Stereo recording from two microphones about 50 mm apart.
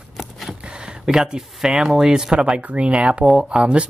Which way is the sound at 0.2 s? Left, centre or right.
Centre.